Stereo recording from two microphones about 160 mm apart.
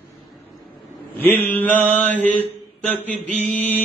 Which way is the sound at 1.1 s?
15° left (ahead or behind).